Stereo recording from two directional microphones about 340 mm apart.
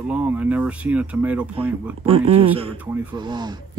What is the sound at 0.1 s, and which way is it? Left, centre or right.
Speech, centre.